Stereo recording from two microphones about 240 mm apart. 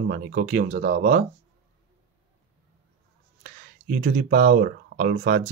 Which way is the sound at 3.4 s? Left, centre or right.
Right.